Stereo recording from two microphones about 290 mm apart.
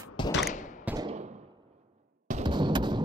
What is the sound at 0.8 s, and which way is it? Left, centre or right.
Fireworks, centre.